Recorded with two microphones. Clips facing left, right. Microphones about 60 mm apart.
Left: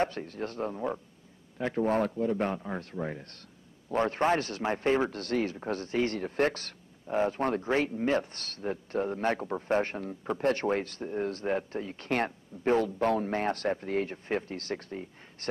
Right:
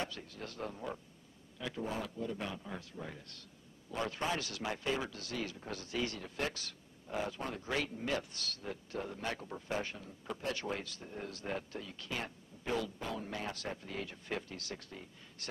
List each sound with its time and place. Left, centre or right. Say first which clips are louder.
0.0 s a man's voice: left 11 dB; left
1.6 s a man's voice: left 12 dB; left
7.7 s a man's voice: left 6 dB; left